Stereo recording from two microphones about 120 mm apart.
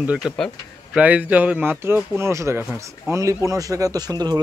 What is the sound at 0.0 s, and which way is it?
Speech, 10° right (ahead or behind).